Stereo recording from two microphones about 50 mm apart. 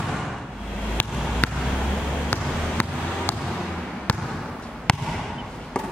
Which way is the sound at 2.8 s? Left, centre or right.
Left.